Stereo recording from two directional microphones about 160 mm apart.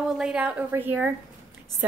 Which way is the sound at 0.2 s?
5° right (ahead or behind).